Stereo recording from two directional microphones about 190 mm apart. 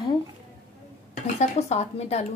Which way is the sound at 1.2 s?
35° left (ahead or behind).